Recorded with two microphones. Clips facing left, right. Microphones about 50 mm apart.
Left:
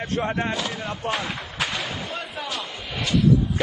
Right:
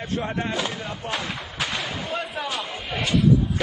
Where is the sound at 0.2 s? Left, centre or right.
Centre.